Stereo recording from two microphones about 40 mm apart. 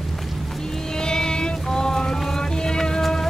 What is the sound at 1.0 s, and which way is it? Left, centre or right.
Music, centre.